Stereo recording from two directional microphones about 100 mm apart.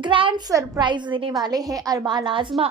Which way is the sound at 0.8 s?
50° right (ahead or behind).